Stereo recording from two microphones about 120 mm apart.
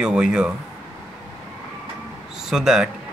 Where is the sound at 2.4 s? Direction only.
5° right (ahead or behind).